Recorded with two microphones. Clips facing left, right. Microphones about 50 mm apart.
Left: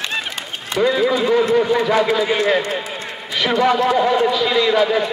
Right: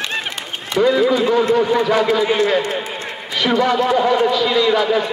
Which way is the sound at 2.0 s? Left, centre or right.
Centre.